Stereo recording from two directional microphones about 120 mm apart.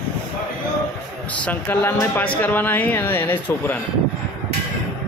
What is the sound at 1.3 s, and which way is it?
Speech, 15° left (ahead or behind).